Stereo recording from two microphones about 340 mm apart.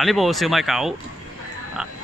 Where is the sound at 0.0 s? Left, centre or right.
Centre.